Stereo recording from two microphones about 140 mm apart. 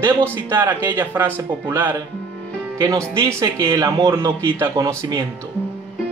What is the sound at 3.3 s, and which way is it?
Speech, 20° right (ahead or behind).